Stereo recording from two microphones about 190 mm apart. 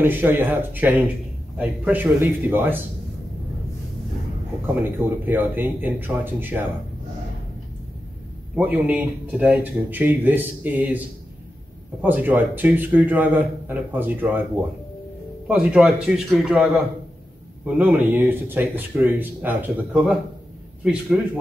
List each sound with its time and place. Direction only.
0.0 s speech: 10° right (ahead or behind)
4.8 s speech: 10° right (ahead or behind)
8.5 s speech: 10° right (ahead or behind)
12.0 s speech: 10° right (ahead or behind)
15.4 s a man's voice: 5° right (ahead or behind)